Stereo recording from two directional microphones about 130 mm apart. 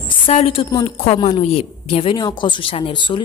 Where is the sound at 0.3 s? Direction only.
50° left (ahead or behind).